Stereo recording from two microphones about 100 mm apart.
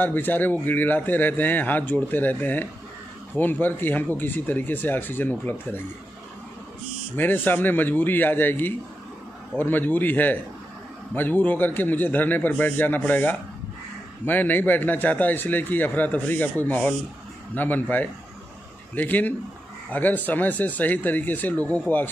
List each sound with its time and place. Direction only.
0.0 s a man's voice: 20° left (ahead or behind)
7.2 s a man's voice: 20° left (ahead or behind)